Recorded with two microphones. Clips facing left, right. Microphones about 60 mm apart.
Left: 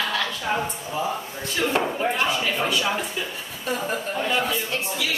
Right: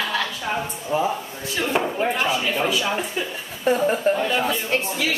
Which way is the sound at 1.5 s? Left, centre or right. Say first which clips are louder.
Even; centre.